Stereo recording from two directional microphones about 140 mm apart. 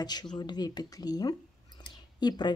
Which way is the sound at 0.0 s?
30° left (ahead or behind).